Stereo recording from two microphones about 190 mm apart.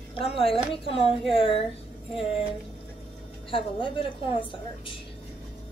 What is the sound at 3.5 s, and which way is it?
Speech, 25° left (ahead or behind).